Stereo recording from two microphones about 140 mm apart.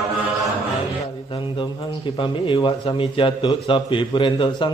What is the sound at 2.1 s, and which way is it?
A man's voice, 35° left (ahead or behind).